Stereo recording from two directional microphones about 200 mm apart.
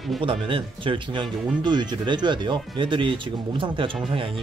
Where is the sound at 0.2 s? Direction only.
25° right (ahead or behind).